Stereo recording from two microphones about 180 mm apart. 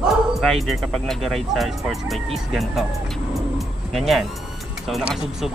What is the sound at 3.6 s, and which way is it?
Vehicle, centre (ahead or behind).